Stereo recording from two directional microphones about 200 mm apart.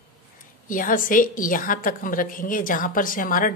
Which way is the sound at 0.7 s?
40° left (ahead or behind).